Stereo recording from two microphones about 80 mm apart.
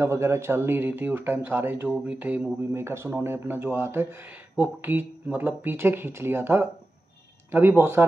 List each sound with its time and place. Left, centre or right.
0.0 s speech: right
2.7 s speech: right